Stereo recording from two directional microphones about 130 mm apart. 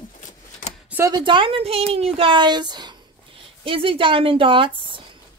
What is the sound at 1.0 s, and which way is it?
Speech, 35° right (ahead or behind).